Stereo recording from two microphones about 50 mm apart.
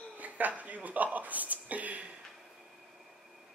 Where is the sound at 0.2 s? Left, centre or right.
Right.